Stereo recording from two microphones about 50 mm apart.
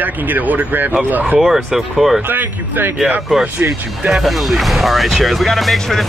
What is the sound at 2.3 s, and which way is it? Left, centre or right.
Speech, right.